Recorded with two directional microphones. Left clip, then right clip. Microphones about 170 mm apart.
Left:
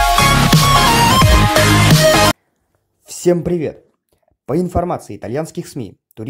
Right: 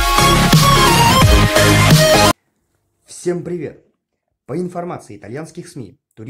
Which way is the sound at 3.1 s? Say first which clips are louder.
Left 6 dB; 35° left (ahead or behind).